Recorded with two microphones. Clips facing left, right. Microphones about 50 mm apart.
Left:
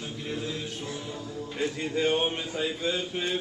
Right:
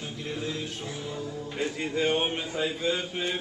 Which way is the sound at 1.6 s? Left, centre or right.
Centre.